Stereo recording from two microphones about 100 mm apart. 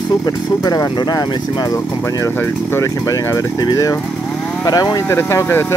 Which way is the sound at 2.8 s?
35° left (ahead or behind).